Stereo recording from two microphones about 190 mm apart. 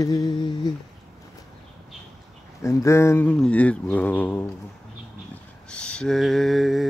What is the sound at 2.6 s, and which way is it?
Speech, 15° left (ahead or behind).